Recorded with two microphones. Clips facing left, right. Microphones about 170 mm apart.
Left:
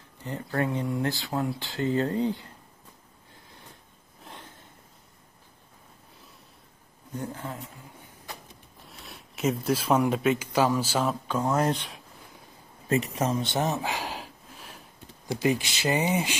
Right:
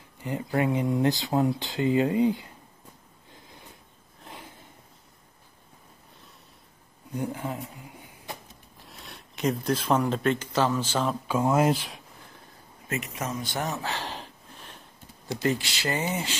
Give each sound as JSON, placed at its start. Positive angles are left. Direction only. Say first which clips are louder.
{"t": 0.2, "sound": "speech", "louder": "right 2 dB", "side_deg": -10}
{"t": 4.2, "sound": "a sound", "louder": "right 1 dB", "side_deg": -5}
{"t": 7.2, "sound": "speech", "louder": "right 4 dB", "side_deg": -10}
{"t": 8.8, "sound": "speech", "louder": "even", "side_deg": 0}
{"t": 11.2, "sound": "speech", "louder": "right 3 dB", "side_deg": -10}
{"t": 12.8, "sound": "a sound", "louder": "left 6 dB", "side_deg": 35}
{"t": 15.4, "sound": "speech", "louder": "left 2 dB", "side_deg": 15}